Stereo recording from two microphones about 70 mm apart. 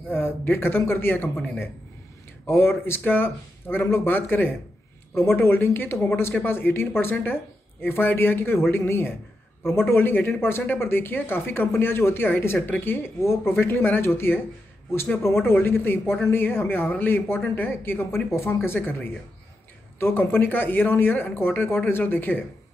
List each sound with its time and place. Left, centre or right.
0.1 s speech: left
2.4 s speech: left
15.4 s speech: left